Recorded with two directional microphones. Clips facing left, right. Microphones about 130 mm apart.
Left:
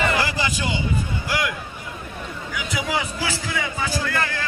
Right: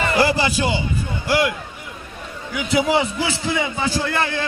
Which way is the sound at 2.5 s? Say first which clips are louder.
Right 8 dB; 25° right (ahead or behind).